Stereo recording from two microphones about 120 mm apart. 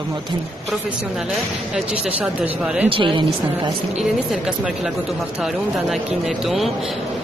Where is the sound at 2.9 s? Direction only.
45° right (ahead or behind).